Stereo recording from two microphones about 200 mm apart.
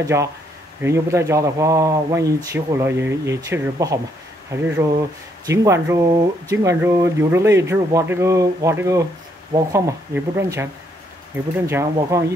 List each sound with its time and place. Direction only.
0.0 s speech: 15° right (ahead or behind)